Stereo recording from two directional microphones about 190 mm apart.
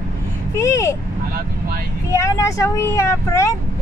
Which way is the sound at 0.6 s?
15° left (ahead or behind).